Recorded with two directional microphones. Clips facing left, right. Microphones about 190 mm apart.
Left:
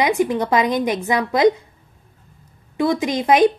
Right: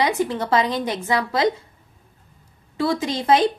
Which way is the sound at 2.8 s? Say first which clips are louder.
Left 3 dB; 15° left (ahead or behind).